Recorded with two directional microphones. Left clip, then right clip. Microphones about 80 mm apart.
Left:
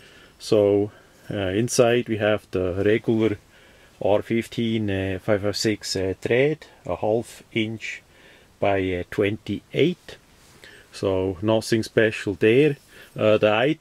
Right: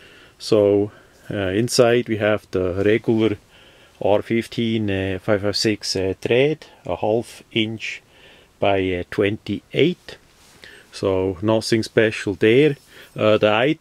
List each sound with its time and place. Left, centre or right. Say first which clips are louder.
0.5 s speech: right 3 dB; right
7.1 s speech: right 2 dB; right